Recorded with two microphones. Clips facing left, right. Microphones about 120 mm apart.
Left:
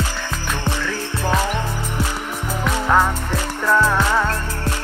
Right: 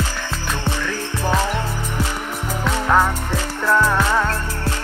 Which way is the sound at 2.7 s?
15° left (ahead or behind).